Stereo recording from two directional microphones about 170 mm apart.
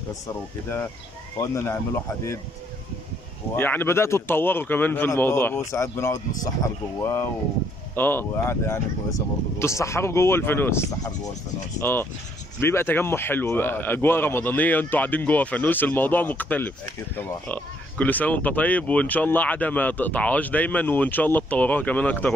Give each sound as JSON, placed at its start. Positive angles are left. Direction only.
{"t": 1.4, "sound": "speech", "side_deg": 15}
{"t": 3.5, "sound": "speech", "side_deg": 10}